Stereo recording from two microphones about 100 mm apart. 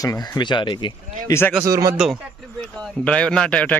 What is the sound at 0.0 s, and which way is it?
Speech, 35° left (ahead or behind).